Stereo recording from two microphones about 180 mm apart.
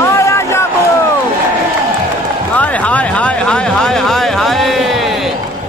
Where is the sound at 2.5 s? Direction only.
10° left (ahead or behind).